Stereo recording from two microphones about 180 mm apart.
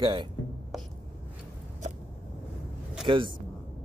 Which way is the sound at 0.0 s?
25° right (ahead or behind).